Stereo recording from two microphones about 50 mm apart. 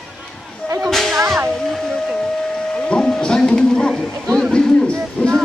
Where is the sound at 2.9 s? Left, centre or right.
Centre.